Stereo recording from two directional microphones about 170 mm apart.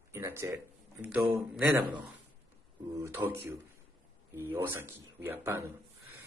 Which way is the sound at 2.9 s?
15° right (ahead or behind).